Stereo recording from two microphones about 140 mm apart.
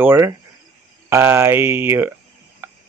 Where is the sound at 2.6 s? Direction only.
15° right (ahead or behind).